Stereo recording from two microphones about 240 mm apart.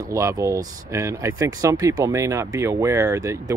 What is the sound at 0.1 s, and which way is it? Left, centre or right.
Speech, centre.